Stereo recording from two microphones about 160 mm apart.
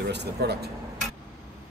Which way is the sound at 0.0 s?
90° right.